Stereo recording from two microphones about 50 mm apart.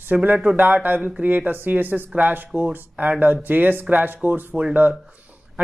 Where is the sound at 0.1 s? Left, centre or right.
Right.